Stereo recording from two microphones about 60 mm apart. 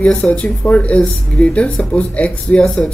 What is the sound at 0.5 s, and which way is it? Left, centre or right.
Speech, centre.